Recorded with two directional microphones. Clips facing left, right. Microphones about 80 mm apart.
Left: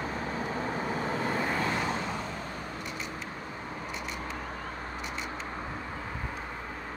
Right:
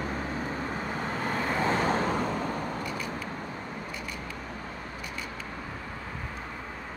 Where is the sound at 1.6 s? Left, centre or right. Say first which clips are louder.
Right 5 dB; right.